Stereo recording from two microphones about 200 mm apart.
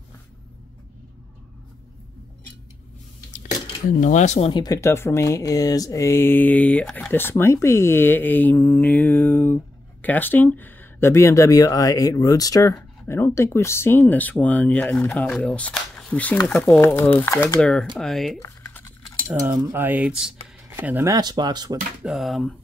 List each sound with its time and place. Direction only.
3.9 s speech: 40° left (ahead or behind); by 17.6 s 15° left (ahead or behind)
17.6 s speech: centre (ahead or behind)
18.4 s typing: 10° left (ahead or behind)
19.2 s cutlery: 15° right (ahead or behind)
20.7 s speech: 10° right (ahead or behind)
22.0 s speech: centre (ahead or behind)